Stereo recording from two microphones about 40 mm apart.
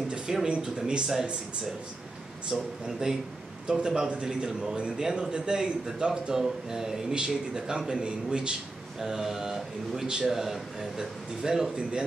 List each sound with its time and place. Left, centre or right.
0.1 s speech: centre
2.5 s speech: centre
4.6 s speech: right
9.0 s speech: centre
10.2 s speech: centre